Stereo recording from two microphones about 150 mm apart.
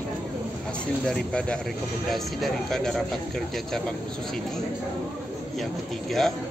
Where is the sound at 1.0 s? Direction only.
5° left (ahead or behind).